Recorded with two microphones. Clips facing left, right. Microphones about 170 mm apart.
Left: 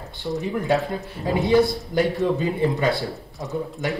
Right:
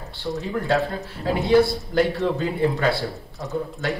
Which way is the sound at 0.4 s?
20° left (ahead or behind).